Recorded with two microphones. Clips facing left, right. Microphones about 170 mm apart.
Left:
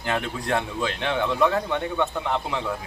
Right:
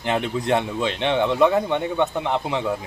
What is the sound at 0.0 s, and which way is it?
Speech, 20° right (ahead or behind).